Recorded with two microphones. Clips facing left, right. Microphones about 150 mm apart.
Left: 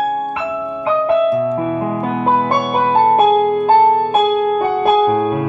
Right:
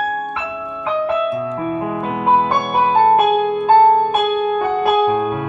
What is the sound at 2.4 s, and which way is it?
Music, 55° left (ahead or behind).